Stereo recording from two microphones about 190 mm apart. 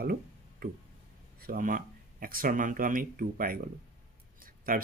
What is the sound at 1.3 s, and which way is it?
Speech, 50° right (ahead or behind).